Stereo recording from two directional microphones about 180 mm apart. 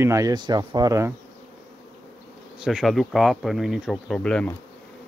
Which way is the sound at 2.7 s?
Centre (ahead or behind).